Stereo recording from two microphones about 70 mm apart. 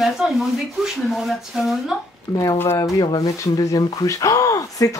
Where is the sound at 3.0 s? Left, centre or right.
Left.